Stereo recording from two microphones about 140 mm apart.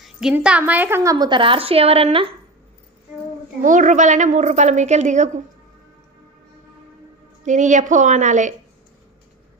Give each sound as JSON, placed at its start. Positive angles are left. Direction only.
{"t": 0.0, "sound": "a woman's voice", "side_deg": -5}
{"t": 1.1, "sound": "a woman's voice", "side_deg": -35}
{"t": 3.6, "sound": "a woman's voice", "side_deg": -65}
{"t": 7.4, "sound": "a woman's voice", "side_deg": -60}